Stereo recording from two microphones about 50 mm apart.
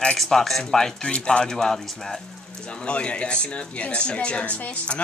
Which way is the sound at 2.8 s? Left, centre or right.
Left.